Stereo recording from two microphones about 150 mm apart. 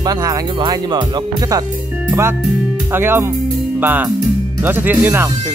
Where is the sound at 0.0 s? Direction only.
25° right (ahead or behind).